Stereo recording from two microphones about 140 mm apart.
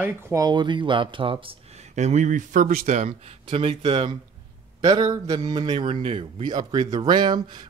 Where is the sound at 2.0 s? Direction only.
55° right (ahead or behind).